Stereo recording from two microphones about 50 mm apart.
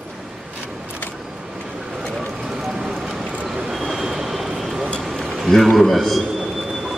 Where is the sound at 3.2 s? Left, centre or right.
Right.